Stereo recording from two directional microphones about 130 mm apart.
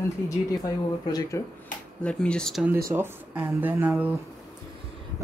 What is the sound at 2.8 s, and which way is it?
Speech, 25° right (ahead or behind).